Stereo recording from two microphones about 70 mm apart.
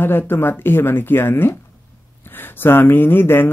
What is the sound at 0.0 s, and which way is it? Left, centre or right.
Speech, left.